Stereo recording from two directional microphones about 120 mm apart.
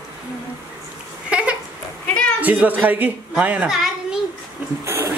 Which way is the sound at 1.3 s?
10° right (ahead or behind).